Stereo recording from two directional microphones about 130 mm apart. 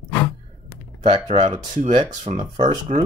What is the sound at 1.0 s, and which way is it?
Speech, 50° right (ahead or behind).